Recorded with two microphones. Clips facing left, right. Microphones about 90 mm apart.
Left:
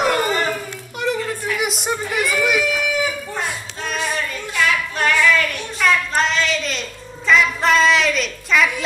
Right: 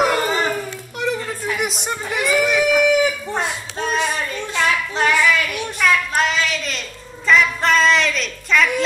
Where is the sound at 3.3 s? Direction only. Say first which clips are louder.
Right 3 dB; 30° right (ahead or behind).